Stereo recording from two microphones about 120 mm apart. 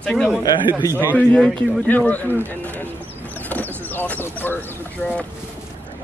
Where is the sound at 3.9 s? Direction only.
15° left (ahead or behind).